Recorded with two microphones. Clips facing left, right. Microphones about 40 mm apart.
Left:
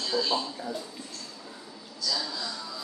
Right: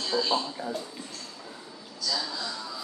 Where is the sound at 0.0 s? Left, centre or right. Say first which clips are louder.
Right 1 dB; centre.